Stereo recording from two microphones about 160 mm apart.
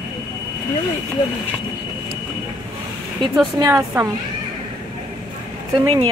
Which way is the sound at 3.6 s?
20° right (ahead or behind).